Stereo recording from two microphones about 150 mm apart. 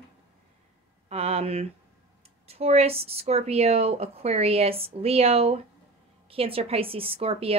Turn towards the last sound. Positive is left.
turn(degrees=-40)  # may be behind; listen again after turning